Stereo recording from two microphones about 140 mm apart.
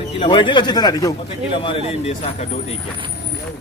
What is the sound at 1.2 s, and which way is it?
A man's voice, 40° left (ahead or behind).